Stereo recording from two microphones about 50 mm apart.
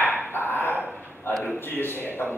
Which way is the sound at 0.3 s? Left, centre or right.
Left.